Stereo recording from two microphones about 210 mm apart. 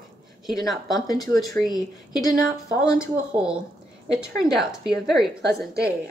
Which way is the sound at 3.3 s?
5° right (ahead or behind).